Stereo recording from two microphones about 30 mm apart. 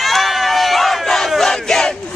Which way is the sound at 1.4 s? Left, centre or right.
Centre.